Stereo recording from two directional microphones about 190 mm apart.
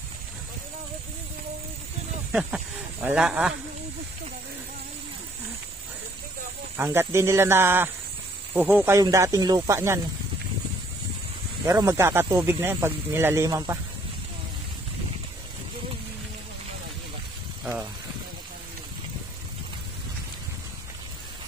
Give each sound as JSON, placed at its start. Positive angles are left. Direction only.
{"t": 2.3, "sound": "speech", "side_deg": -5}
{"t": 6.8, "sound": "speech", "side_deg": -15}
{"t": 11.6, "sound": "speech", "side_deg": -15}